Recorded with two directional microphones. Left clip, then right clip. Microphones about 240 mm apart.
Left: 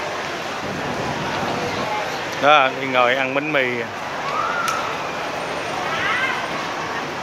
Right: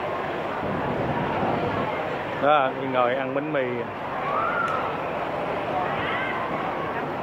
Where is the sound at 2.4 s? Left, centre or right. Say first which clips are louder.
Left 6 dB; left.